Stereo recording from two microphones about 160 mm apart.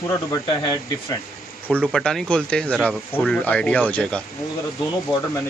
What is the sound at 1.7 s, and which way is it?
Speech, 5° left (ahead or behind).